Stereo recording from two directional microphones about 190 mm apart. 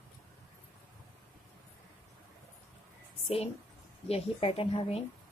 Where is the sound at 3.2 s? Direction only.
30° left (ahead or behind).